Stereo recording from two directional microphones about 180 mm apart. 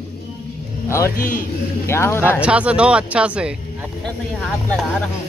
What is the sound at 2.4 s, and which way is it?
Speech, 5° right (ahead or behind).